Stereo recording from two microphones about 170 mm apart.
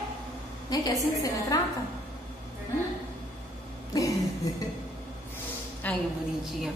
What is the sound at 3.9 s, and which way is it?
Throat clearing, 20° left (ahead or behind).